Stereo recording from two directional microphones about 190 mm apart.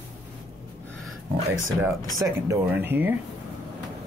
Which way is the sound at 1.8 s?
15° right (ahead or behind).